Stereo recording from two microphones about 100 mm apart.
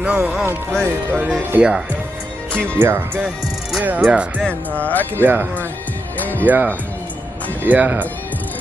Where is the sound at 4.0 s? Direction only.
10° right (ahead or behind).